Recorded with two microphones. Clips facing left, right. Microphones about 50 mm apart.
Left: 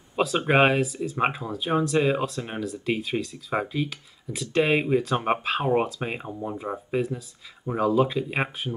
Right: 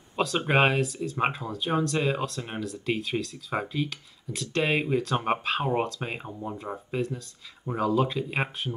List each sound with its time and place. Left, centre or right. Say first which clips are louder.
0.1 s speech: left 3 dB; centre